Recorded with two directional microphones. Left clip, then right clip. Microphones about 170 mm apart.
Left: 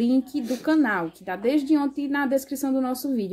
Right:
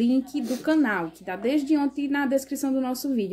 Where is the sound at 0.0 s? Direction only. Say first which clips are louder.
Left 1 dB; 25° left (ahead or behind).